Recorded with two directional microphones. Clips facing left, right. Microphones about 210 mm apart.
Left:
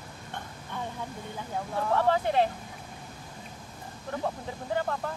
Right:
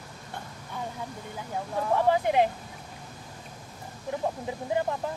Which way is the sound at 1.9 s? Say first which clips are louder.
Right 2 dB; 15° right (ahead or behind).